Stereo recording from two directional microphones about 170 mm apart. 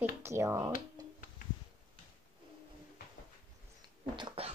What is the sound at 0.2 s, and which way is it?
Speech, 15° right (ahead or behind).